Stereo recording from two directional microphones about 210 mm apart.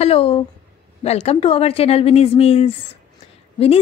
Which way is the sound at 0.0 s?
25° left (ahead or behind).